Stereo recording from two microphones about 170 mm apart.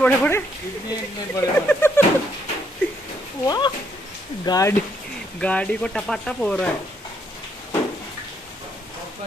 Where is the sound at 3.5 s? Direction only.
25° left (ahead or behind); by 6.7 s 5° left (ahead or behind).